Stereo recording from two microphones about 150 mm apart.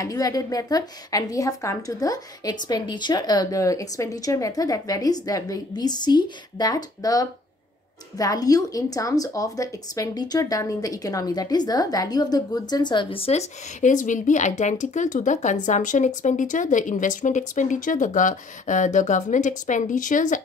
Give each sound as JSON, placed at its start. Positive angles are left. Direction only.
{"t": 0.0, "sound": "a woman's voice", "side_deg": 25}